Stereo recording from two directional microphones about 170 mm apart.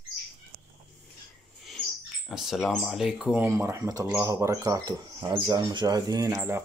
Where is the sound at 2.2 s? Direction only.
Centre (ahead or behind).